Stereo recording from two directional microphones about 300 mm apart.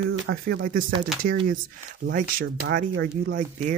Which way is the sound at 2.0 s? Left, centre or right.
Right.